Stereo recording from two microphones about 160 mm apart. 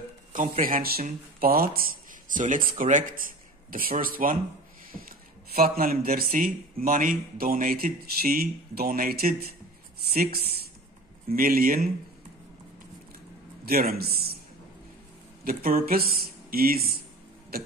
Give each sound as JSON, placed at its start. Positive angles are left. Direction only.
{"t": 0.3, "sound": "speech", "side_deg": -60}
{"t": 11.2, "sound": "speech", "side_deg": -65}
{"t": 13.7, "sound": "speech", "side_deg": -70}
{"t": 15.4, "sound": "speech", "side_deg": -70}